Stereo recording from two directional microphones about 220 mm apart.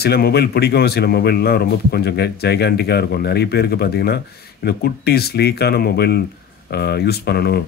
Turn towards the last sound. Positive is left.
turn(degrees=45)  # may be behind; listen again after turning